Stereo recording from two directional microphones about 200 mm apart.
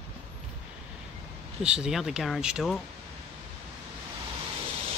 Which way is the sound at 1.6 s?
5° right (ahead or behind).